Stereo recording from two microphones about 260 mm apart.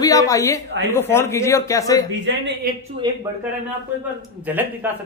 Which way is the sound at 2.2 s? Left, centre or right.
Right.